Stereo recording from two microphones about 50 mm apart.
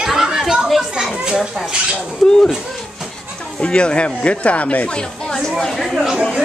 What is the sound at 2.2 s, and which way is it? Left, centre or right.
Speech, centre.